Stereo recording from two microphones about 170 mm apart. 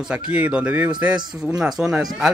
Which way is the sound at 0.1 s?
5° right (ahead or behind).